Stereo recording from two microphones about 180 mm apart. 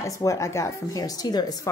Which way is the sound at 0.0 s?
15° left (ahead or behind).